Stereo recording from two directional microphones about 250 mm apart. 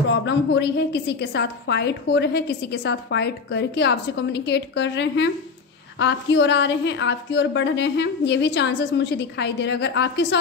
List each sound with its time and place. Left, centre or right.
0.1 s a woman's voice: left